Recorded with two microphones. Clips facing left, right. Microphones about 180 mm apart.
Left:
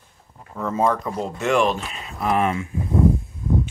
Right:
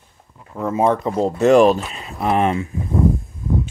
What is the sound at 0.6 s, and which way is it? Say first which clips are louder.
Speech: right 3 dB; 15° right (ahead or behind).